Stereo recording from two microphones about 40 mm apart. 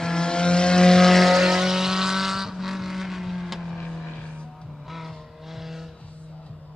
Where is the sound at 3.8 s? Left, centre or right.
Centre.